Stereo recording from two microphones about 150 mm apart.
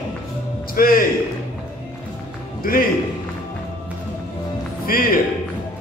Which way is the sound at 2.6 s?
75° left (ahead or behind).